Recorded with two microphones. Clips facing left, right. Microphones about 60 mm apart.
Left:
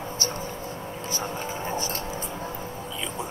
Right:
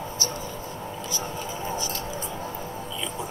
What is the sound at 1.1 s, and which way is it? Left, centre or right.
Vehicle, left.